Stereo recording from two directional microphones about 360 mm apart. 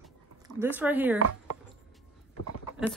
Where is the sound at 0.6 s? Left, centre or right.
Centre.